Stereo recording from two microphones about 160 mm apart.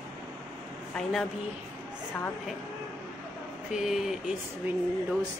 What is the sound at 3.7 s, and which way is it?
Speech, 5° right (ahead or behind).